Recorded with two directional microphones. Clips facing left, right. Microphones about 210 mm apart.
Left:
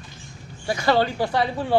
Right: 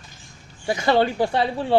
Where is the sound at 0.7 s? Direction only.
20° right (ahead or behind).